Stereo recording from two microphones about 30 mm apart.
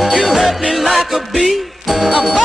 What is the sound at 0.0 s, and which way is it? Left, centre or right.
Music, centre.